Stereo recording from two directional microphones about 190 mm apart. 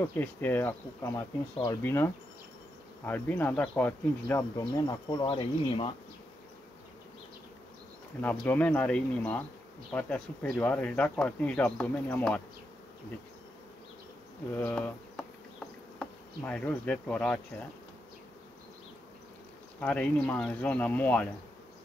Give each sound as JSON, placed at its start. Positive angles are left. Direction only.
{"t": 0.0, "sound": "speech", "side_deg": 10}
{"t": 5.2, "sound": "speech", "side_deg": 30}
{"t": 8.2, "sound": "speech", "side_deg": 10}
{"t": 14.5, "sound": "speech", "side_deg": 5}
{"t": 16.0, "sound": "insect", "side_deg": 5}
{"t": 19.8, "sound": "speech", "side_deg": 10}